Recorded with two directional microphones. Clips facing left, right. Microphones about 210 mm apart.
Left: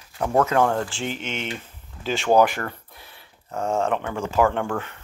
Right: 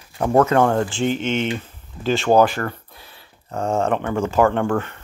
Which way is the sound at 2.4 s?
15° left (ahead or behind).